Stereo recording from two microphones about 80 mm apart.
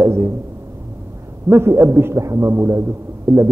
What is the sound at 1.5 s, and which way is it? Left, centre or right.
A man's voice, right.